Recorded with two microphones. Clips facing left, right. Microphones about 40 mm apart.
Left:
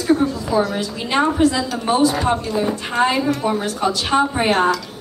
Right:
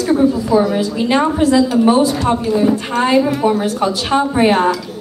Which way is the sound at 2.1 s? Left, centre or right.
Centre.